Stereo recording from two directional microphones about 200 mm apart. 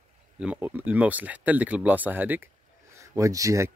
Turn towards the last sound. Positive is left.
turn(degrees=-15)  # may be behind; listen again after turning